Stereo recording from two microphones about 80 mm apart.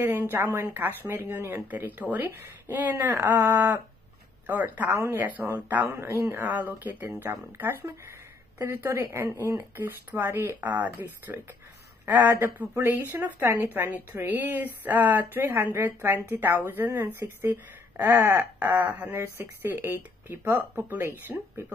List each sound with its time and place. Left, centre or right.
0.2 s speech: right
5.9 s speech: right
6.3 s speech: right
10.6 s speech: right
18.6 s speech: centre